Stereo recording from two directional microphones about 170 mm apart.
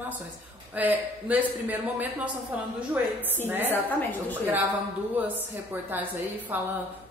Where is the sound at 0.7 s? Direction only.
10° right (ahead or behind).